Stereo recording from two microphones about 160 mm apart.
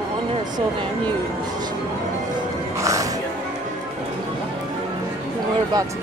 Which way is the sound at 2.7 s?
20° right (ahead or behind).